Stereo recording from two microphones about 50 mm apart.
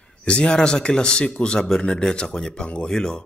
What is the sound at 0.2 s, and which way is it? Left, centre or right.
Speech, left.